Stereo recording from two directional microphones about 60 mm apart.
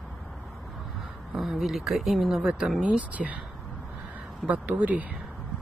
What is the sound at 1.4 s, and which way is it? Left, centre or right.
Speech, centre.